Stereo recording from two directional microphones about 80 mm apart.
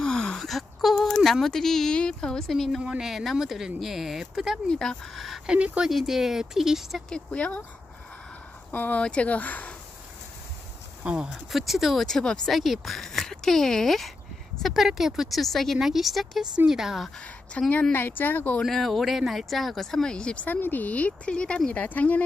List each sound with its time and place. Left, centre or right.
0.0 s speech: centre
4.6 s speech: centre
7.1 s speech: centre
8.7 s speech: centre
11.2 s speech: centre
17.6 s speech: centre
18.6 s speech: centre